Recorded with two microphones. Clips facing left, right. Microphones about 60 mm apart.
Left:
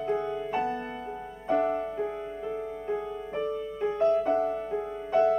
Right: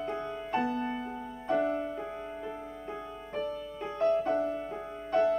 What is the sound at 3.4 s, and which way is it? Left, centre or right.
Music, left.